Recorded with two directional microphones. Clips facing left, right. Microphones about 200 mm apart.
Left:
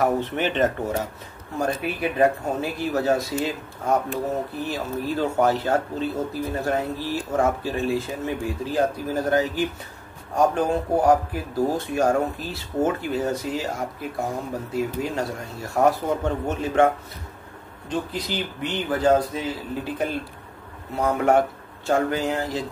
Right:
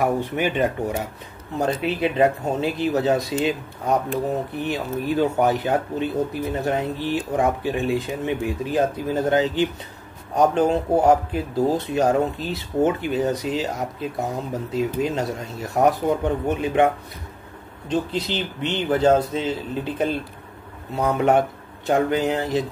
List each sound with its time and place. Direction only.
0.0 s speech: 10° right (ahead or behind)
21.2 s speech: 20° right (ahead or behind)